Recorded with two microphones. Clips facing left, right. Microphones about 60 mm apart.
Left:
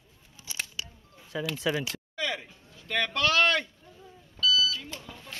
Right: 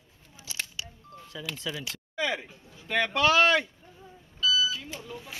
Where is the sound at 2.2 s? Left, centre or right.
Centre.